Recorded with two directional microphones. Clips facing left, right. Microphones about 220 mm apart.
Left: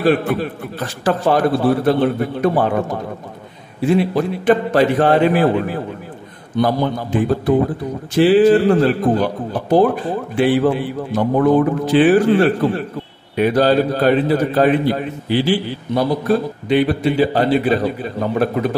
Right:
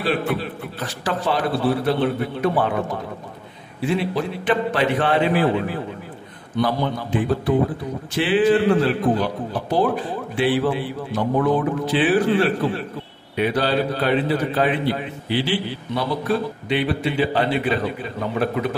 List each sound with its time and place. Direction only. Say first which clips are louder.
0.0 s a man's voice: left 6 dB; 45° left (ahead or behind)
3.8 s a man's voice: left 6 dB; 45° left (ahead or behind)
6.6 s a man's voice: left 4 dB; 45° left (ahead or behind)